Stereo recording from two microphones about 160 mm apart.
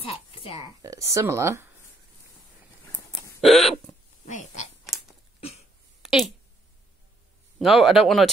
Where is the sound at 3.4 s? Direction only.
Centre (ahead or behind).